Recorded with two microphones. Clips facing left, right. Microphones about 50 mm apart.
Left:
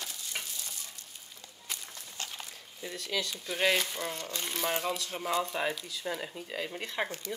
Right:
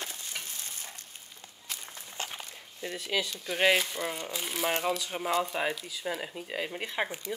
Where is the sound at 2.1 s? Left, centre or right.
Right.